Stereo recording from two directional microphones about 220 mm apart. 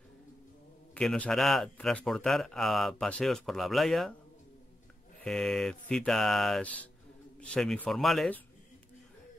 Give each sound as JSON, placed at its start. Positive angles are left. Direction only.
{"t": 0.9, "sound": "speech", "side_deg": 5}
{"t": 5.2, "sound": "speech", "side_deg": 0}